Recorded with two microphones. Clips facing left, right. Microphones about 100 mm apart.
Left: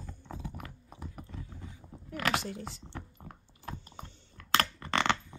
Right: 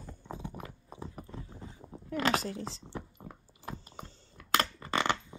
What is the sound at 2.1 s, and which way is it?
Speech, 35° right (ahead or behind).